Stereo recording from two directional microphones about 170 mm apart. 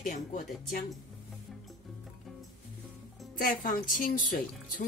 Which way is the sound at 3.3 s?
55° left (ahead or behind).